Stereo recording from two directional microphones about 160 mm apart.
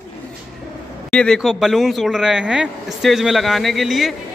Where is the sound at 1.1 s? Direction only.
5° left (ahead or behind).